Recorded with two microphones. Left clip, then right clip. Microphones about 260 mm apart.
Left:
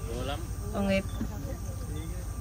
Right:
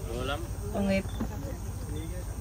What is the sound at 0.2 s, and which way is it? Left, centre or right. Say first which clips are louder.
Insect: right 2 dB; left.